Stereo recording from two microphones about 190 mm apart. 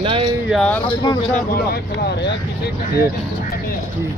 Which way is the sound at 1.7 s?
60° left (ahead or behind).